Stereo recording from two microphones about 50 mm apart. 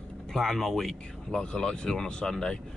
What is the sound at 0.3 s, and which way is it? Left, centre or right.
Speech, centre.